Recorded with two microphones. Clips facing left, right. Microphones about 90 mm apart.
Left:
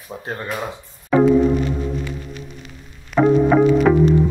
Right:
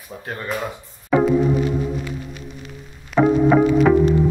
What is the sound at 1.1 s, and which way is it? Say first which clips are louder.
Music: left 3 dB; centre (ahead or behind).